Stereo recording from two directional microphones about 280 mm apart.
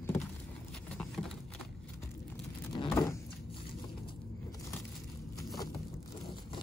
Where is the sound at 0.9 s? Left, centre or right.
Centre.